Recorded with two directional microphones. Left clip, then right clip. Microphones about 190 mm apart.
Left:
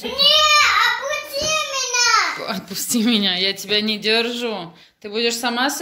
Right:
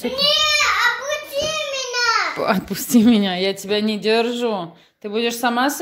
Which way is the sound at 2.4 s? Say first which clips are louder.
Right 6 dB; 45° right (ahead or behind).